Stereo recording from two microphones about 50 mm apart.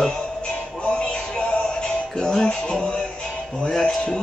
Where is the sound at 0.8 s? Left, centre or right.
Centre.